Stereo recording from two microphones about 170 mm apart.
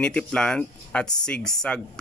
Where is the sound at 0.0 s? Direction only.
5° left (ahead or behind).